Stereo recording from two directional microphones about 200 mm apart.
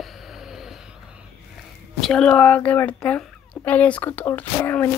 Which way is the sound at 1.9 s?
Centre (ahead or behind).